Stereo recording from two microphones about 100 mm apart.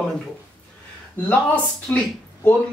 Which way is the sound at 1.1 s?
15° left (ahead or behind).